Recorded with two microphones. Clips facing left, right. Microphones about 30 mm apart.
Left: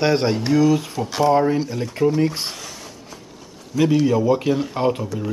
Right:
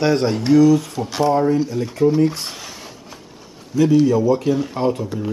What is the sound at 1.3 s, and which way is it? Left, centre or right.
Speech, centre.